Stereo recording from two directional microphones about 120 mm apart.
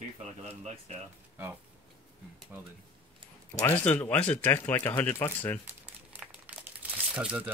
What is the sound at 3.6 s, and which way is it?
Speech, 15° left (ahead or behind).